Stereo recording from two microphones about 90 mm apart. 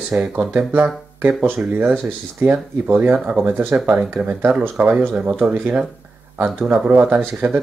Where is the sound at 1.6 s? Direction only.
20° right (ahead or behind).